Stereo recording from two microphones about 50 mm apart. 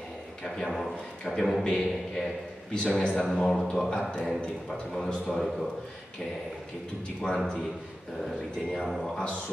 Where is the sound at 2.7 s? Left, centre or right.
Centre.